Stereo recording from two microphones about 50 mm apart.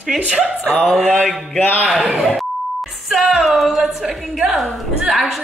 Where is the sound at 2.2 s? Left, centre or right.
Centre.